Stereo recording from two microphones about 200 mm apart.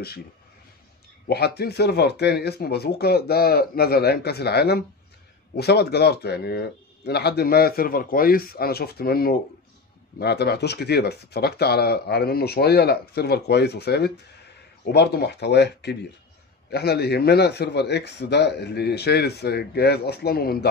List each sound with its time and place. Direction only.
1.2 s a man's voice: 55° left (ahead or behind)